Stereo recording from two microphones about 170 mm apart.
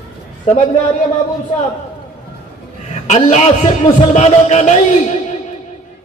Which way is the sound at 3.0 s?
40° left (ahead or behind).